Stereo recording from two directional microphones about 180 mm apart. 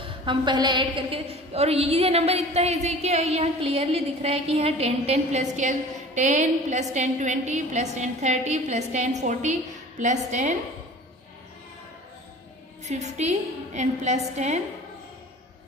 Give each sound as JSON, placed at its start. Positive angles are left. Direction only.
{"t": 0.0, "sound": "a woman's voice", "side_deg": -25}
{"t": 12.8, "sound": "a woman's voice", "side_deg": -40}